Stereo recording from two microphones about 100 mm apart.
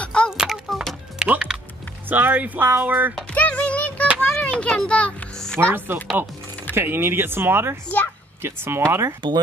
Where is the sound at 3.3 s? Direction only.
15° left (ahead or behind).